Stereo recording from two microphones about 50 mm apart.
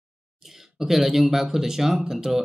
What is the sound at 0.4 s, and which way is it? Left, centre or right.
Speech, centre.